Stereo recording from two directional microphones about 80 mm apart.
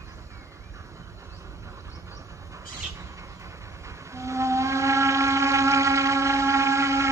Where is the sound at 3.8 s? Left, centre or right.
Right.